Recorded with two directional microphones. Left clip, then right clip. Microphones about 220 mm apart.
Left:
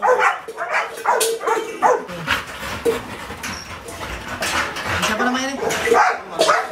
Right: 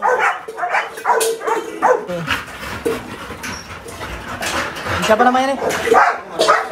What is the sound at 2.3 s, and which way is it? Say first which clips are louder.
Dog: even; centre (ahead or behind).